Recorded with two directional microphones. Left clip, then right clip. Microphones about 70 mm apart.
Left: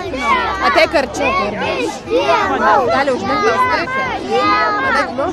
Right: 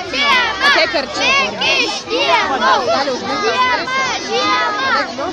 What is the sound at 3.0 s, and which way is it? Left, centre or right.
Speech, left.